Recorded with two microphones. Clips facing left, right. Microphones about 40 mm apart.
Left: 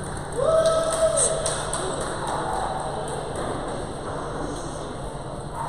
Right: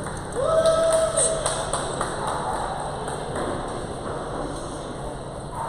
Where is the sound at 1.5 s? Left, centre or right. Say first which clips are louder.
Right 1 dB; centre.